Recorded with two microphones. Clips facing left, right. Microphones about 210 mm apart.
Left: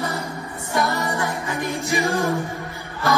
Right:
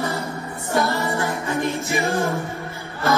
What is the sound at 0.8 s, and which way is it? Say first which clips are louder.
Music: right 1 dB; 15° left (ahead or behind).